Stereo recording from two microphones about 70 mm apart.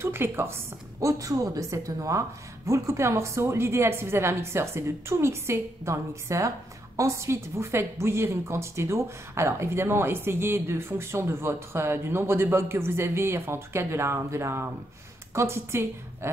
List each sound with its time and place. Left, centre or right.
0.0 s a woman's voice: right
1.0 s a woman's voice: right